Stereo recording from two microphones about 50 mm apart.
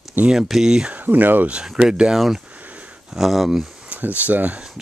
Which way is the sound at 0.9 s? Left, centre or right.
Right.